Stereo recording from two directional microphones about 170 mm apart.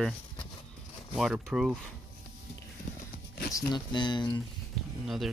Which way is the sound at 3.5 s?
25° left (ahead or behind).